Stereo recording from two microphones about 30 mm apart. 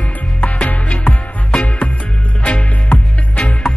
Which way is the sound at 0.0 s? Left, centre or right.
Left.